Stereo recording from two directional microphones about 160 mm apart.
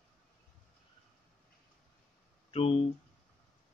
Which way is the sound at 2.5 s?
35° left (ahead or behind).